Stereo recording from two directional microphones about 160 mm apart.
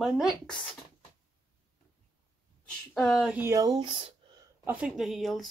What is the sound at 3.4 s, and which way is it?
Speech, 20° right (ahead or behind).